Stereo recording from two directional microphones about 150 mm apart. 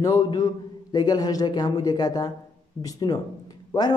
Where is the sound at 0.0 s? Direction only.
25° left (ahead or behind).